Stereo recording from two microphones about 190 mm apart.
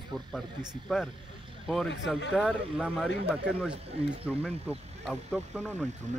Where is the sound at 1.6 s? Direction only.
Centre (ahead or behind).